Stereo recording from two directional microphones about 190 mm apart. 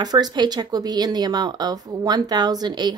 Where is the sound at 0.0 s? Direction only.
20° right (ahead or behind).